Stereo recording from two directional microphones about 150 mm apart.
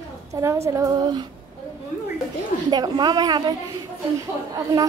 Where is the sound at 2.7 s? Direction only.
25° right (ahead or behind).